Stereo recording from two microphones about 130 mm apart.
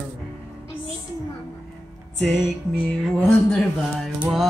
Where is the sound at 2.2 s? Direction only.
10° left (ahead or behind).